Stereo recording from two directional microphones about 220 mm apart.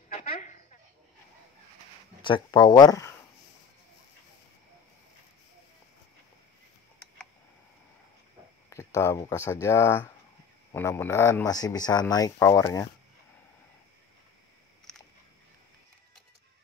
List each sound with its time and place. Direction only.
0.2 s a sound: 35° left (ahead or behind)
2.2 s speech: 20° left (ahead or behind)
8.6 s speech: 15° left (ahead or behind)
14.9 s biting: centre (ahead or behind)